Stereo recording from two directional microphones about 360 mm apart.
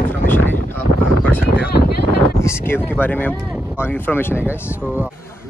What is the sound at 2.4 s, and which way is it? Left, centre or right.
A man's voice, centre.